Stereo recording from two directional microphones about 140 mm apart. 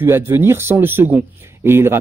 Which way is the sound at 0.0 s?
15° right (ahead or behind).